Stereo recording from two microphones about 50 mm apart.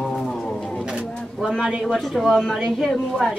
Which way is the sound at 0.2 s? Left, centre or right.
Centre.